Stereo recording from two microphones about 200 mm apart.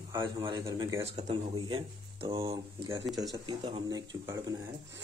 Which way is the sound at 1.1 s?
30° right (ahead or behind).